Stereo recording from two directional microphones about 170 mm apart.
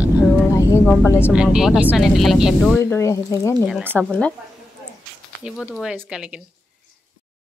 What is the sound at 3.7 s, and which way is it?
Speech, 10° right (ahead or behind).